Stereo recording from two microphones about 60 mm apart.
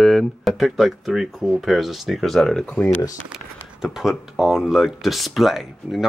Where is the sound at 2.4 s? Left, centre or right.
Centre.